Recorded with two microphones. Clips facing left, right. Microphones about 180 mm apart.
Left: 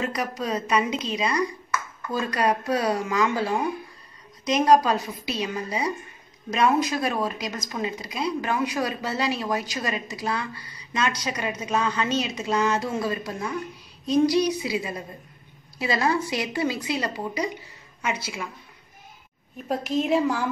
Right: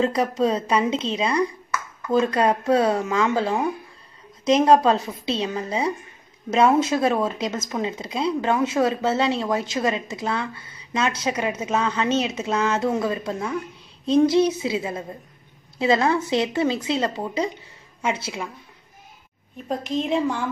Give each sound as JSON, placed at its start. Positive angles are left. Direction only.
{"t": 0.0, "sound": "speech", "side_deg": -30}
{"t": 19.7, "sound": "a woman's voice", "side_deg": 5}